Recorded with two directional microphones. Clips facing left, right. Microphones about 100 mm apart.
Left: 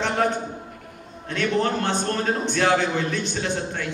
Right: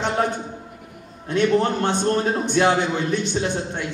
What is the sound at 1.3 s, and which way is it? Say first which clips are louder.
A man's voice: right 4 dB; 20° right (ahead or behind).